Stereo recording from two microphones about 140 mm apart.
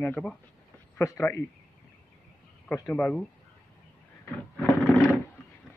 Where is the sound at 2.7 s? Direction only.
15° left (ahead or behind).